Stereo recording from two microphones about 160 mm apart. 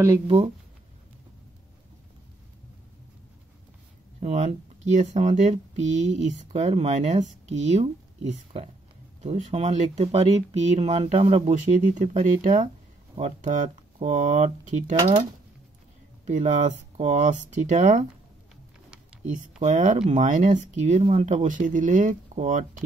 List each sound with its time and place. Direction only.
4.2 s speech: 45° right (ahead or behind)
9.2 s speech: 45° right (ahead or behind)
16.3 s speech: 45° right (ahead or behind)
19.6 s speech: 50° right (ahead or behind)